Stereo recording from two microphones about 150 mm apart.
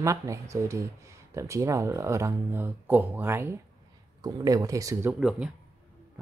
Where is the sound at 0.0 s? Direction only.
20° right (ahead or behind).